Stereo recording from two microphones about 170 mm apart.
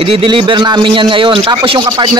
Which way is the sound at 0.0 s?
30° right (ahead or behind).